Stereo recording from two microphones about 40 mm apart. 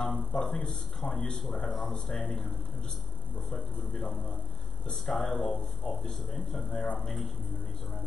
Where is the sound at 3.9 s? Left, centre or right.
Centre.